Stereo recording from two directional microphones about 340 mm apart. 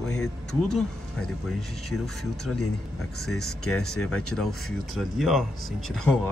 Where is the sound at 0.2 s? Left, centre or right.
Centre.